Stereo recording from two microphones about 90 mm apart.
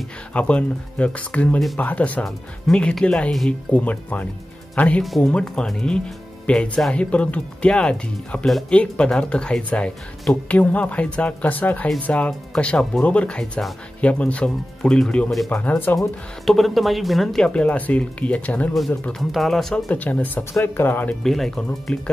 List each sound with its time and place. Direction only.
0.3 s speech: 15° left (ahead or behind)
2.2 s speech: 5° left (ahead or behind)
16.4 s speech: centre (ahead or behind)
19.9 s speech: 15° left (ahead or behind)
21.2 s speech: 5° left (ahead or behind)